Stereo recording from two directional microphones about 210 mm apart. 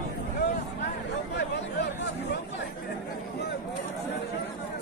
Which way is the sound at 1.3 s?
55° left (ahead or behind).